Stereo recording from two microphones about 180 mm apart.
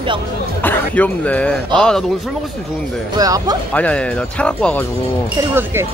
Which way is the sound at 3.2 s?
20° right (ahead or behind).